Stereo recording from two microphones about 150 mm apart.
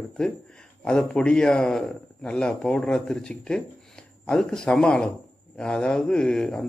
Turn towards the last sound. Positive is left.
turn(degrees=5)  # may be behind; listen again after turning